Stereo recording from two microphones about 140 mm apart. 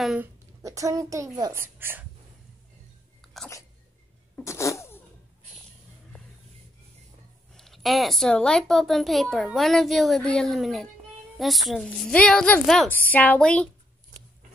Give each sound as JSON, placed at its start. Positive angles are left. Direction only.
{"t": 0.0, "sound": "a woman's voice", "side_deg": -5}
{"t": 0.6, "sound": "a child's voice", "side_deg": -25}
{"t": 4.5, "sound": "cat", "side_deg": 20}
{"t": 7.5, "sound": "a woman's voice", "side_deg": 0}